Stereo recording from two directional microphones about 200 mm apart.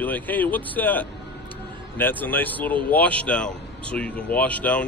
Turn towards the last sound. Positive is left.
turn(degrees=5)  # may be behind; listen again after turning